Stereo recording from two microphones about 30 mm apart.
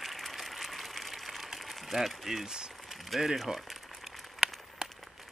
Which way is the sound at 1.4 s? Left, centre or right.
Centre.